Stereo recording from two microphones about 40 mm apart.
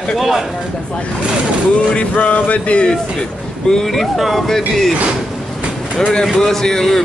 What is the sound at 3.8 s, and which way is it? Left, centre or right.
Speech, centre.